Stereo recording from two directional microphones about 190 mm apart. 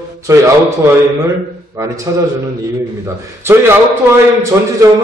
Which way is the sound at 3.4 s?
15° right (ahead or behind).